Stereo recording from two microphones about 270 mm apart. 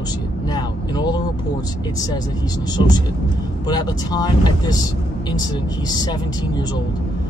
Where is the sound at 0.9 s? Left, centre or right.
Centre.